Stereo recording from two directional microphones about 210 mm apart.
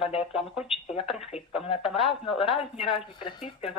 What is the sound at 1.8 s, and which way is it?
Speech, centre (ahead or behind).